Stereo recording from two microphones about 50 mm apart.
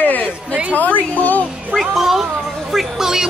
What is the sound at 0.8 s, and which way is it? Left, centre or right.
Speech, left.